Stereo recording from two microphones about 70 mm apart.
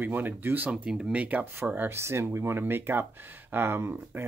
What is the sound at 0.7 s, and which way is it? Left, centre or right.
Speech, centre.